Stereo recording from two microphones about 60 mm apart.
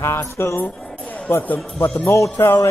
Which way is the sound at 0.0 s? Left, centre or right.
Left.